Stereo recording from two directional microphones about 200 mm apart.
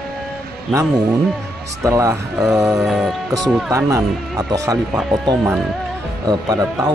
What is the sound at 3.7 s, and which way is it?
Speech, 15° right (ahead or behind).